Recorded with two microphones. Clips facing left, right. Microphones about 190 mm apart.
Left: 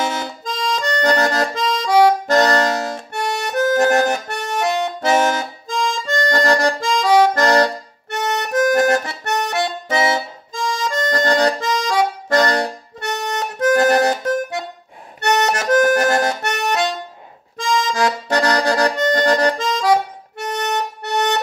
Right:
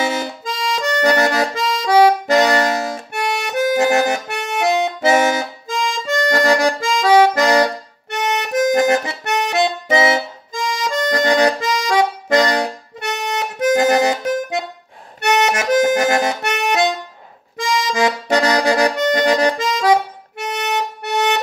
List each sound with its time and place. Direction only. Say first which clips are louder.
0.2 s accordion: right 1 dB; 10° right (ahead or behind)
5.0 s music: right 1 dB; 10° right (ahead or behind)
15.1 s accordion: right 1 dB; 10° right (ahead or behind)